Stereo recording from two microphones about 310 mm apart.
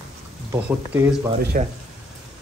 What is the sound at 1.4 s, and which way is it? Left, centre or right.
Speech, right.